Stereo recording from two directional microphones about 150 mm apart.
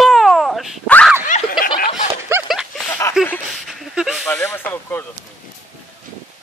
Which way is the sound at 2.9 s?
15° left (ahead or behind).